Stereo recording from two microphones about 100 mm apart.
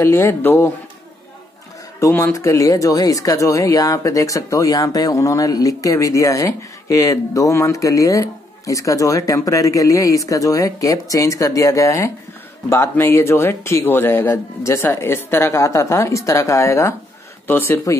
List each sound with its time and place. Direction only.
0.0 s speech: 25° left (ahead or behind)
2.0 s speech: 25° left (ahead or behind)